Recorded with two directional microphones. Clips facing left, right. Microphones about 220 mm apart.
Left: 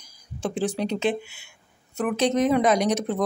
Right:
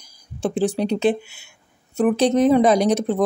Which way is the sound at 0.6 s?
35° right (ahead or behind).